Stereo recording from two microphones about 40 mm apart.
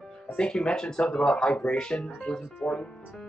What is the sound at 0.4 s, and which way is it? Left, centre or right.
Speech, centre.